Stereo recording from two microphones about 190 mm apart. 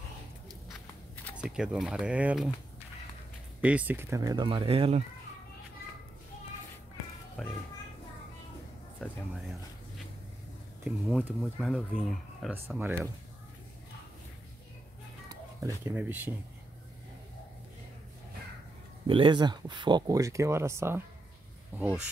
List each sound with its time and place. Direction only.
0.5 s walk: 5° left (ahead or behind)
1.3 s speech: 5° right (ahead or behind)
3.6 s speech: 10° right (ahead or behind); by 5.0 s 30° right (ahead or behind)
7.4 s a sound: centre (ahead or behind)
10.8 s speech: 5° right (ahead or behind)
12.6 s speech: 10° right (ahead or behind)
15.2 s speech: 15° right (ahead or behind)
19.0 s speech: 25° right (ahead or behind); by 22.1 s 10° right (ahead or behind)